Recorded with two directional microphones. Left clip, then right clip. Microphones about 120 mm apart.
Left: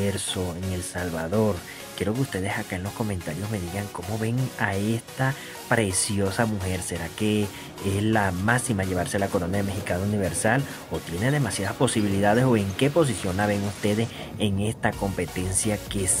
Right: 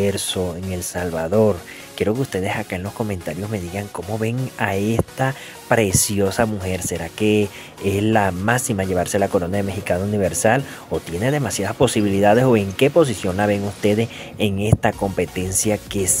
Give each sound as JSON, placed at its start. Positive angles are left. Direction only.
{"t": 0.0, "sound": "speech", "side_deg": -30}